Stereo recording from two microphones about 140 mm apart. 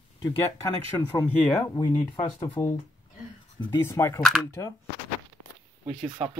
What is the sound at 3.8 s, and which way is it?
Speech, 15° left (ahead or behind).